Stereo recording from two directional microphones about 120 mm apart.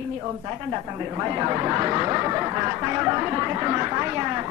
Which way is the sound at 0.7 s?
20° right (ahead or behind).